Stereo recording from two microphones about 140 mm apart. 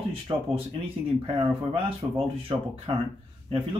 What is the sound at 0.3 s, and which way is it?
Speech, 35° right (ahead or behind).